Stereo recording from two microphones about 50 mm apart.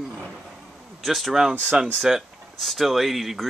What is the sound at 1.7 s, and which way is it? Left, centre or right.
Speech, right.